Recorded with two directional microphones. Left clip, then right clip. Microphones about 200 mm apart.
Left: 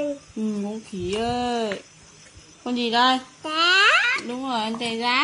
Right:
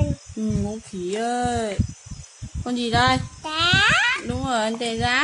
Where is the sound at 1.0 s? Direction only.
15° right (ahead or behind).